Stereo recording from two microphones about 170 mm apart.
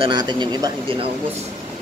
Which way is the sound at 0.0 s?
25° right (ahead or behind).